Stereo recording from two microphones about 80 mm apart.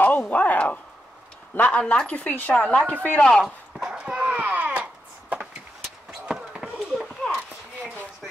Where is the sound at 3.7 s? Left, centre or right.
Centre.